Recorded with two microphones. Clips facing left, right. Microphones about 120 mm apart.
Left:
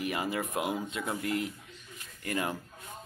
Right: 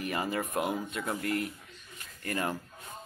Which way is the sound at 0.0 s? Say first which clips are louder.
Even; 15° left (ahead or behind).